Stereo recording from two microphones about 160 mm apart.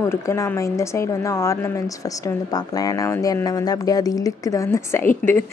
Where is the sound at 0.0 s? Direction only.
15° left (ahead or behind).